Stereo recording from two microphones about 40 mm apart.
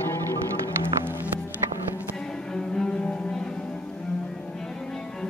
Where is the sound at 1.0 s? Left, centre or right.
Right.